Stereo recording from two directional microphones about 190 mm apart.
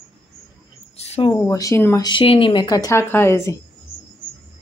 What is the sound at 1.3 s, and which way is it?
Speech, 20° left (ahead or behind).